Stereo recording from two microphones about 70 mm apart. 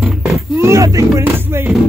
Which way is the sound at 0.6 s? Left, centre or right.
Right.